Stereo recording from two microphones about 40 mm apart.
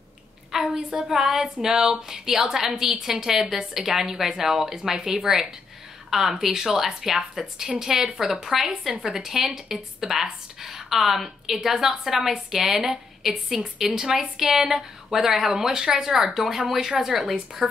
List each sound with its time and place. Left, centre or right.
0.5 s a sound: centre
1.0 s a woman's voice: centre
17.6 s speech: centre